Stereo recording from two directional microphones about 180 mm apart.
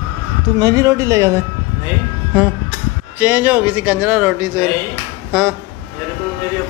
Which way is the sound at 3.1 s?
10° right (ahead or behind).